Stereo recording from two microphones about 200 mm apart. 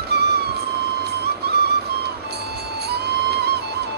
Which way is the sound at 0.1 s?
55° right (ahead or behind).